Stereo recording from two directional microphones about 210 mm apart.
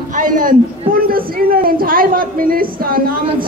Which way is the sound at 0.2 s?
40° right (ahead or behind).